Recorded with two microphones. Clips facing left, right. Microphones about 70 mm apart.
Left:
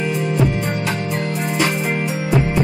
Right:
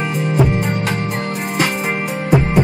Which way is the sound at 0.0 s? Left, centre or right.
Right.